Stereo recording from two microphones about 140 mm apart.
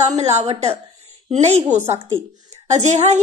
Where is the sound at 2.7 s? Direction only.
55° right (ahead or behind).